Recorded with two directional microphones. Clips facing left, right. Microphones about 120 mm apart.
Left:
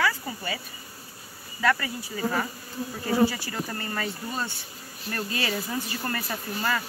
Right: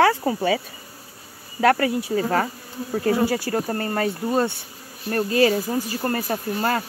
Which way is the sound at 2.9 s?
55° right (ahead or behind).